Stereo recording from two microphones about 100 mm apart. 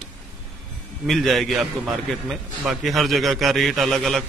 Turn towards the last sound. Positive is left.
turn(degrees=0)  # may be behind; listen again after turning